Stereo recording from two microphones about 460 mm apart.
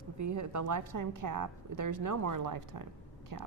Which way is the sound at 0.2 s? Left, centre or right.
Right.